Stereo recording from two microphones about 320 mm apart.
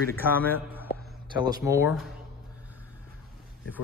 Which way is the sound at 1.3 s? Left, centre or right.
Centre.